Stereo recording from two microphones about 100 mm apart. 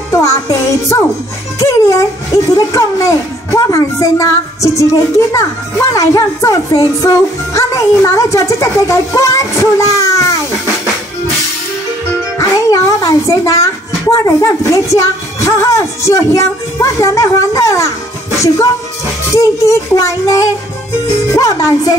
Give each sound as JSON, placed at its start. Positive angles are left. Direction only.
{"t": 0.1, "sound": "a child's voice", "side_deg": 30}
{"t": 12.4, "sound": "a child's voice", "side_deg": 35}
{"t": 19.3, "sound": "a child's voice", "side_deg": 30}